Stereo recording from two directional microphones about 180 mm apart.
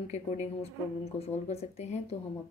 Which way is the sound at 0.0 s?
40° left (ahead or behind).